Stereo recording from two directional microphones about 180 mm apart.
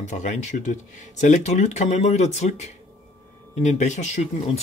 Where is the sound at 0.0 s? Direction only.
40° left (ahead or behind).